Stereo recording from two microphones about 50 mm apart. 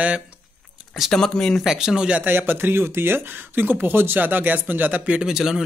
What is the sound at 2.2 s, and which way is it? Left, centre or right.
Speech, right.